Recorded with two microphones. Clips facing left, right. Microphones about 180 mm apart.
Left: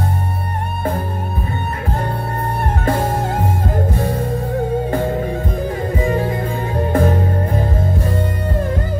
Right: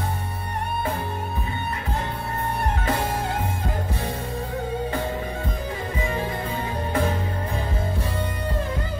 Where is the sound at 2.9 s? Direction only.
45° left (ahead or behind).